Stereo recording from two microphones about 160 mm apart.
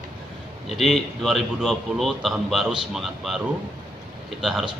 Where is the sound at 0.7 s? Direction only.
Centre (ahead or behind).